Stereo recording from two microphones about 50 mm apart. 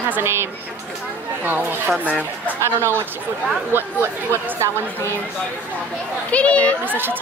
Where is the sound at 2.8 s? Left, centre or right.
Right.